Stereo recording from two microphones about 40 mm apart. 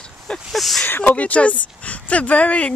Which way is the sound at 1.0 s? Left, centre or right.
Left.